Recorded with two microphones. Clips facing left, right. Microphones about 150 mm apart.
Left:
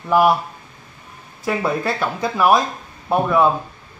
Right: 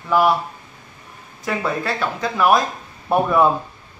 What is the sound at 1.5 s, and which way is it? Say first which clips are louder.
Speech: left 2 dB; 10° left (ahead or behind).